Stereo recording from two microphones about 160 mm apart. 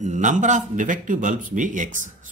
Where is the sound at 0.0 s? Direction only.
50° right (ahead or behind).